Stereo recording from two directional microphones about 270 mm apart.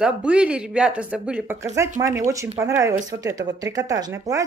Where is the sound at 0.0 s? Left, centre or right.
Centre.